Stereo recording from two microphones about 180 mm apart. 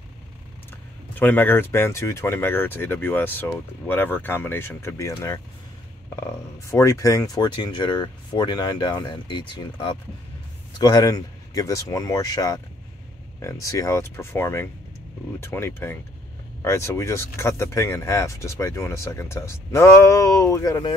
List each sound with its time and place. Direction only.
1.1 s speech: 10° left (ahead or behind)